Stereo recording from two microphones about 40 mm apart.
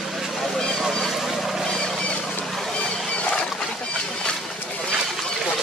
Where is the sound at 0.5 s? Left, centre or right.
Centre.